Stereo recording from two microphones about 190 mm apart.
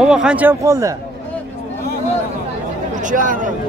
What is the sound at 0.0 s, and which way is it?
Speech, 5° right (ahead or behind).